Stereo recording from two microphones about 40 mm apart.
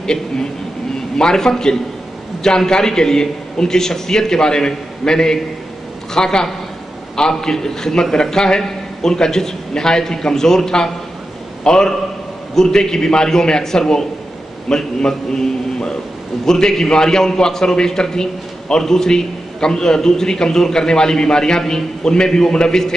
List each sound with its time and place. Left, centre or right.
0.0 s a man's voice: centre